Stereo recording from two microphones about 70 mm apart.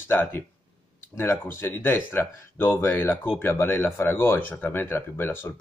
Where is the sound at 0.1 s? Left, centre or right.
Left.